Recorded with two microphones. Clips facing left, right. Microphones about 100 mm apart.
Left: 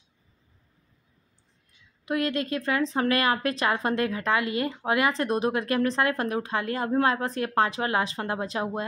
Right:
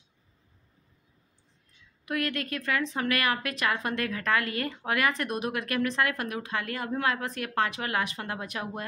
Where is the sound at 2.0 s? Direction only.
25° left (ahead or behind).